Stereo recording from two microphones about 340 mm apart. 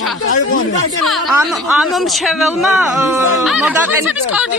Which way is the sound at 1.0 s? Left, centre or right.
Centre.